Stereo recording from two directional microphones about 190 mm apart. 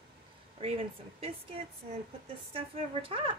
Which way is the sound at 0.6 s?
30° right (ahead or behind).